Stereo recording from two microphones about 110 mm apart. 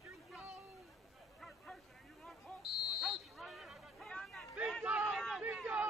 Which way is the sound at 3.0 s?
Centre (ahead or behind).